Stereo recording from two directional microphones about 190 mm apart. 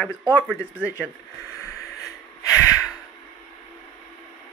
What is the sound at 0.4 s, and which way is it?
Speech, 5° left (ahead or behind).